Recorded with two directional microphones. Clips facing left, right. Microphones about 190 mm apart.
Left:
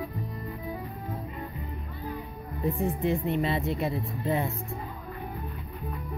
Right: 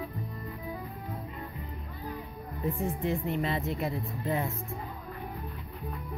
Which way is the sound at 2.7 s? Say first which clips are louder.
Left 4 dB; 20° left (ahead or behind).